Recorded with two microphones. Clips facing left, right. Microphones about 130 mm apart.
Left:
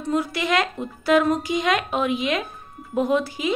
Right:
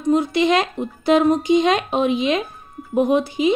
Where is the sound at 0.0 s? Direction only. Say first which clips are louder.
Right 7 dB; 20° right (ahead or behind).